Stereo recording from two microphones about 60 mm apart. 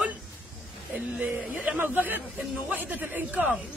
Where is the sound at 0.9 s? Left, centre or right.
Right.